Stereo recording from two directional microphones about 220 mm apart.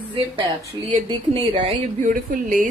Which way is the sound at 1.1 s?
25° right (ahead or behind).